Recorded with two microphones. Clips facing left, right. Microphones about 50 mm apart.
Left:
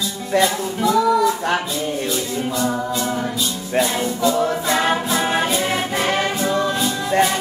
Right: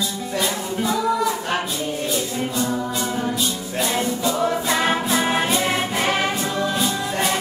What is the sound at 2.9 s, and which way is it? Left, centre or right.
Music, centre.